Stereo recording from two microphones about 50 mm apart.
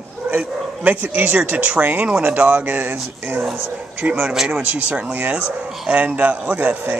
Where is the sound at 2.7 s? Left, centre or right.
Right.